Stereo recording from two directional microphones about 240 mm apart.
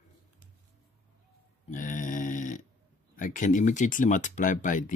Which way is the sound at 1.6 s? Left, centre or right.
Left.